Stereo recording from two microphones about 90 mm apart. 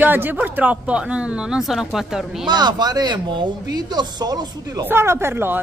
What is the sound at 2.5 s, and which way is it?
Speech, 50° right (ahead or behind).